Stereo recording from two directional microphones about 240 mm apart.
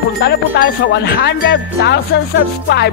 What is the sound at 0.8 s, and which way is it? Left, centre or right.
Speech, left.